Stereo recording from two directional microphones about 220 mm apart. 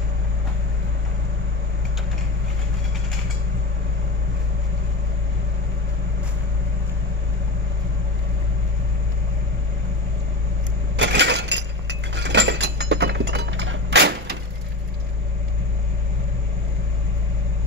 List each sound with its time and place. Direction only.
11.0 s chink: 55° right (ahead or behind)